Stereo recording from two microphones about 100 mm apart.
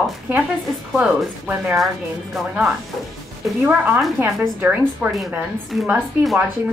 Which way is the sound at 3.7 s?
15° right (ahead or behind).